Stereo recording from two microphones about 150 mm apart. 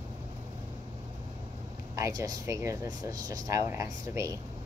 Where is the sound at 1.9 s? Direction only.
20° right (ahead or behind).